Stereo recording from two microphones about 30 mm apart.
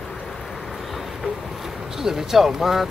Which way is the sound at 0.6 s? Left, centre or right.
Centre.